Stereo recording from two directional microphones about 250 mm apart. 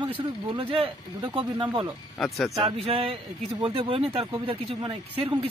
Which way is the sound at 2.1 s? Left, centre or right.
Centre.